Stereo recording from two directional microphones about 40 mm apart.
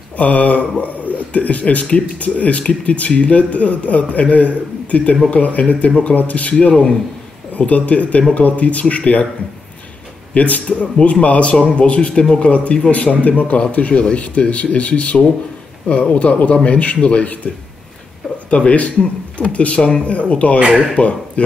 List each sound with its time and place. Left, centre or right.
0.2 s speech: left
10.3 s speech: left
12.1 s speech: centre
18.5 s speech: left